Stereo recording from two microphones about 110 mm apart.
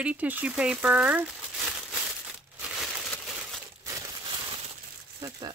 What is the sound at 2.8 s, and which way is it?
Crumpling, 5° left (ahead or behind).